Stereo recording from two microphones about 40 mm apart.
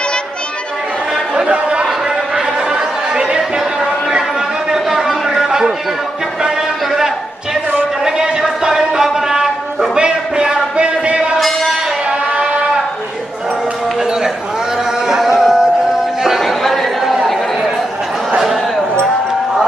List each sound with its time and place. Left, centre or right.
1.3 s chatter: right
4.6 s a sound: centre
11.3 s music: centre
15.0 s music: centre
16.3 s chatter: centre
18.4 s a sound: centre